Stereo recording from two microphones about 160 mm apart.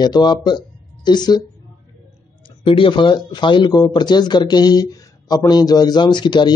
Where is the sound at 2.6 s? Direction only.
30° left (ahead or behind).